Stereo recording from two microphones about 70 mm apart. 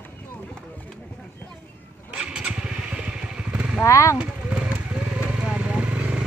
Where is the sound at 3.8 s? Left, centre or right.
Left.